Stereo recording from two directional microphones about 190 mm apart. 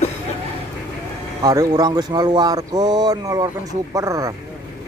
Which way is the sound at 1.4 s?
20° right (ahead or behind).